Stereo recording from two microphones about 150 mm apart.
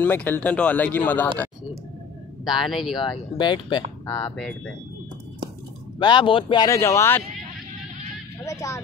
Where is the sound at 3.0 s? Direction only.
30° left (ahead or behind).